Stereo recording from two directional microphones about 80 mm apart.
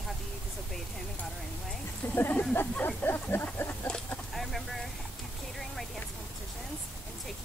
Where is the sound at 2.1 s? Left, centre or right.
Left.